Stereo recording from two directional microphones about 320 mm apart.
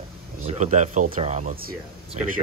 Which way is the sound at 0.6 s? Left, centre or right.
Right.